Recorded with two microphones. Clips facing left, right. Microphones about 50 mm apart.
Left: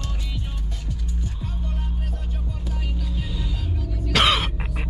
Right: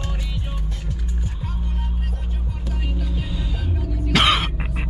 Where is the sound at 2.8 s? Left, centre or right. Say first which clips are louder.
Right 4 dB; centre.